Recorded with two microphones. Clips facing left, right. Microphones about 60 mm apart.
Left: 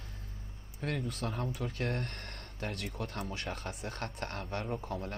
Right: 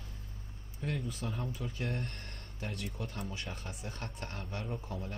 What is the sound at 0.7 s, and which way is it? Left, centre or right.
Speech, left.